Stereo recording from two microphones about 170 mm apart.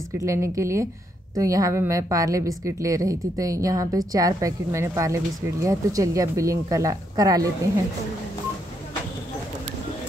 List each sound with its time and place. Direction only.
0.2 s a woman's voice: 20° right (ahead or behind)